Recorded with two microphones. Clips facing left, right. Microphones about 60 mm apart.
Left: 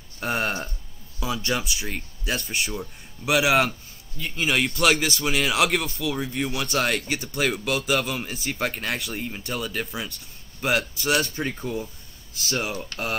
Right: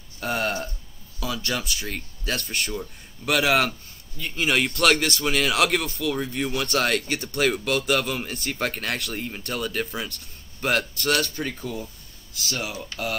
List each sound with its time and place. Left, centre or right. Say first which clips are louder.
0.2 s speech: even; left
1.4 s speech: left 2 dB; centre
11.3 s speech: left 2 dB; left